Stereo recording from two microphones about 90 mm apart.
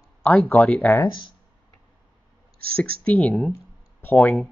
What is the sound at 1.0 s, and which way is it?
Speech, 60° left (ahead or behind).